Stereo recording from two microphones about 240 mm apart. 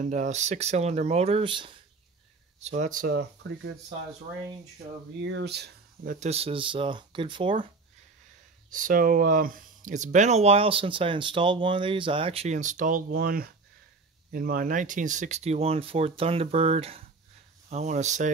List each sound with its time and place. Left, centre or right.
0.0 s speech: right
5.2 s speech: right
6.1 s speech: right
8.7 s speech: right